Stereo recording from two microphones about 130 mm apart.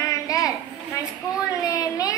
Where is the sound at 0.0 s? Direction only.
25° left (ahead or behind).